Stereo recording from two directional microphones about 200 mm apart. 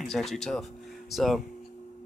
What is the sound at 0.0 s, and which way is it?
Speech, centre (ahead or behind).